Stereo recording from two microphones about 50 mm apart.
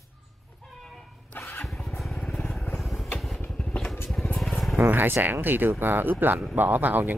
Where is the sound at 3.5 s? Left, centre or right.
Centre.